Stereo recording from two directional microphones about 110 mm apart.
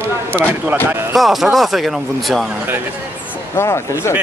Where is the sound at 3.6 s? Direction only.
25° left (ahead or behind).